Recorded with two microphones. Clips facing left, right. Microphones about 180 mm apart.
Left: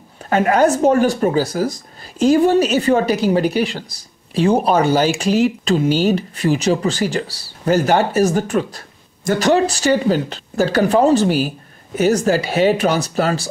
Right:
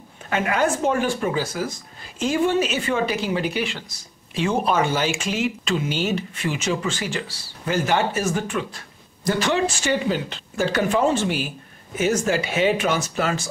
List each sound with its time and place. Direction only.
0.3 s speech: 40° left (ahead or behind)